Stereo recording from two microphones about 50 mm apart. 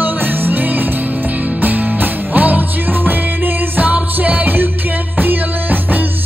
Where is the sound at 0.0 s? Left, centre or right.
Right.